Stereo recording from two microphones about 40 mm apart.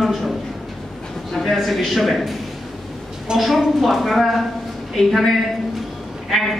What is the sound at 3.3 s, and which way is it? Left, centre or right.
Speech, centre.